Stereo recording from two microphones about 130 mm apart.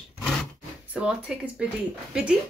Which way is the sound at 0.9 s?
10° right (ahead or behind).